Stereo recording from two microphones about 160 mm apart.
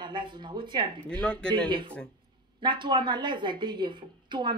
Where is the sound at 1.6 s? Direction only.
30° right (ahead or behind).